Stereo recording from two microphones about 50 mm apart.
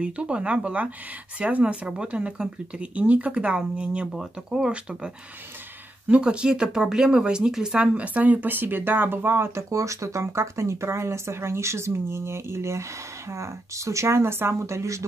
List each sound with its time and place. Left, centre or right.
0.0 s speech: right
4.1 s speech: centre; by 9.7 s right
9.7 s speech: right
13.3 s speech: right